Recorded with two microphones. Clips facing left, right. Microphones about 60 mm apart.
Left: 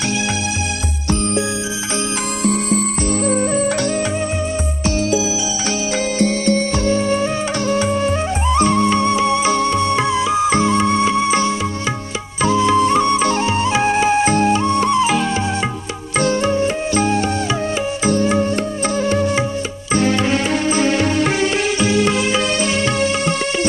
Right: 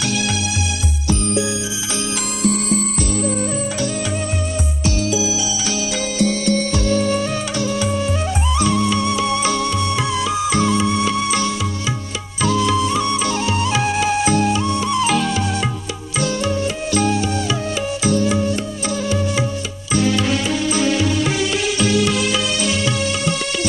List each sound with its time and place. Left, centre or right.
2.4 s music: left
6.1 s music: left
11.1 s music: left
12.8 s music: left
15.0 s music: left
16.2 s music: left